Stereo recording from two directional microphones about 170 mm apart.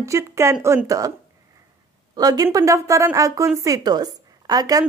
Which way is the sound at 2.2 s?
20° right (ahead or behind).